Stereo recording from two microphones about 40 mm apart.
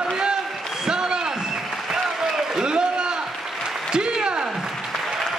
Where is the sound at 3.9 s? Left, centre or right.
Right.